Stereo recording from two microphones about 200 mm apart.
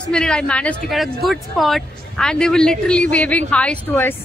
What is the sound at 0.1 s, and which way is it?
Speech, 5° left (ahead or behind).